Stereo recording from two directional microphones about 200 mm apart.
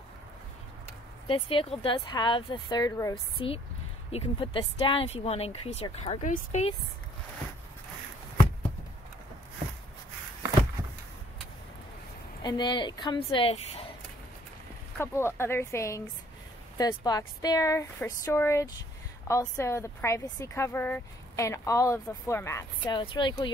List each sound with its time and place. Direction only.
1.2 s speech: 25° left (ahead or behind)
12.4 s speech: 20° left (ahead or behind)
15.0 s a woman's voice: 10° left (ahead or behind)